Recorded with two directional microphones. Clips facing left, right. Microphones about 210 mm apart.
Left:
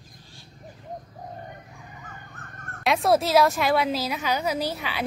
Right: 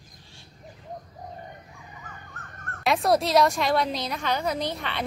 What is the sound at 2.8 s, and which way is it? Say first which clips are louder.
Speech: left 1 dB; centre (ahead or behind).